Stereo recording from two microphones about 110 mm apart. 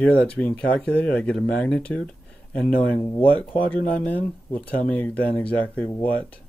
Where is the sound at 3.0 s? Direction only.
25° left (ahead or behind).